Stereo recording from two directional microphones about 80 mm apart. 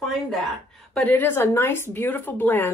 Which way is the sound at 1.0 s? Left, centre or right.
Left.